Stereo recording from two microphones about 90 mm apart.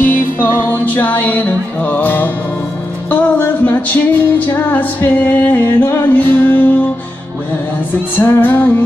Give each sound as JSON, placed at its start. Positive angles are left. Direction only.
{"t": 0.0, "sound": "music", "side_deg": 25}
{"t": 8.2, "sound": "music", "side_deg": 20}